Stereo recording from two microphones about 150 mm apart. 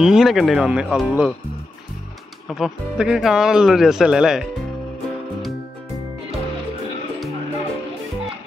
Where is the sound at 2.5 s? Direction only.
Centre (ahead or behind).